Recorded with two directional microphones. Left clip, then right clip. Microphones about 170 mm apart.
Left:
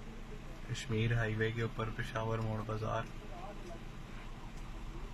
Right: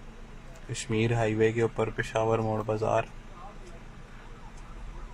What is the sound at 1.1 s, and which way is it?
Speech, 10° right (ahead or behind).